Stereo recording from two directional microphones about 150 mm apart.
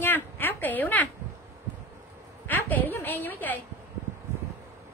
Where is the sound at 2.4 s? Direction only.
10° left (ahead or behind).